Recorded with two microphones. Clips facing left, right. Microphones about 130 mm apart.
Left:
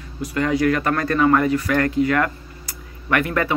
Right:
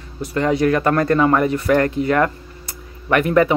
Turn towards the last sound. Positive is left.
turn(degrees=-20)  # may be behind; listen again after turning